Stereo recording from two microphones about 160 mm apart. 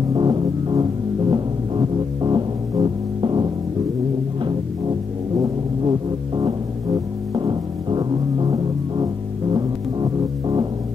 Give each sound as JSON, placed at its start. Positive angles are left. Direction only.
{"t": 0.1, "sound": "music", "side_deg": -25}